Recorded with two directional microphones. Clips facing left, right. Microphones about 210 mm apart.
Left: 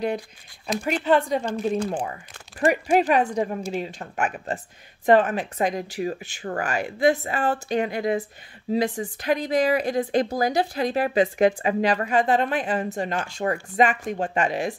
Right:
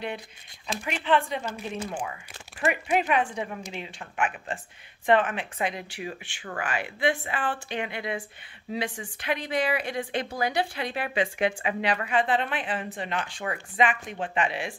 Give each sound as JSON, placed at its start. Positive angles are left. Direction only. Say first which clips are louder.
{"t": 0.8, "sound": "speech", "louder": "left 5 dB", "side_deg": 40}